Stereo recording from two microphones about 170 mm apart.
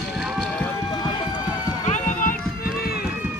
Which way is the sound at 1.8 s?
45° left (ahead or behind).